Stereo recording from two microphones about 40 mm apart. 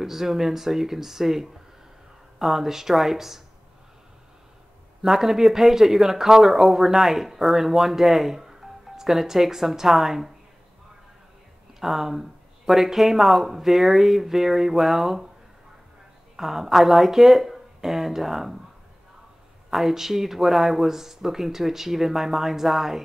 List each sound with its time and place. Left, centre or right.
0.0 s speech: centre
5.0 s speech: centre
11.8 s speech: centre
16.3 s speech: centre
19.7 s speech: centre